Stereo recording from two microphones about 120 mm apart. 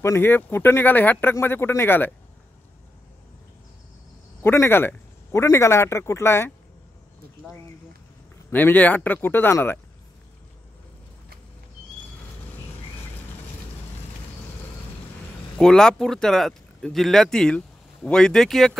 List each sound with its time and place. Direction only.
0.0 s speech: 20° left (ahead or behind)
4.4 s speech: 20° left (ahead or behind)
8.5 s speech: 15° left (ahead or behind)
15.5 s speech: 5° left (ahead or behind)